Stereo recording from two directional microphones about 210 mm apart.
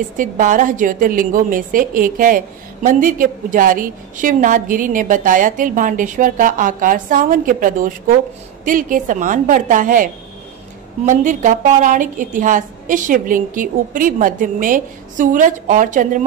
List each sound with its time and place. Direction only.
0.2 s a woman's voice: 40° right (ahead or behind)
11.1 s a woman's voice: 35° right (ahead or behind)